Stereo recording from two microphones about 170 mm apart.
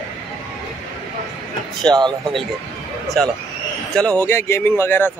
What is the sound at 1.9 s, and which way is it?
Speech, 5° left (ahead or behind).